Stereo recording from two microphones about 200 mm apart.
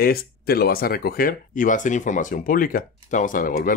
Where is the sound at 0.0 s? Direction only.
50° left (ahead or behind).